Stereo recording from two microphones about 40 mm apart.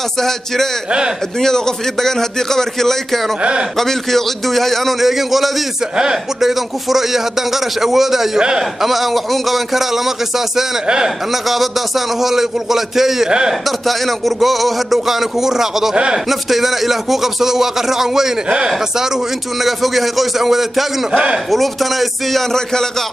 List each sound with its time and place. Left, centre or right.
1.4 s a man's voice: centre
8.4 s a man's voice: right
8.8 s speech: centre
13.3 s a man's voice: centre
13.7 s speech: centre
19.6 s speech: centre
22.3 s a man's voice: centre